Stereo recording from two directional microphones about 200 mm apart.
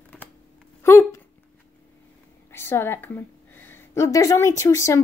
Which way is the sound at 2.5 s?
10° left (ahead or behind).